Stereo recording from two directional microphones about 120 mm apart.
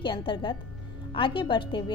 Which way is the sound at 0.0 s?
45° left (ahead or behind).